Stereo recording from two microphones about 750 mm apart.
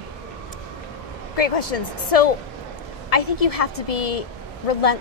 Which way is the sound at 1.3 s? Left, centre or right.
Left.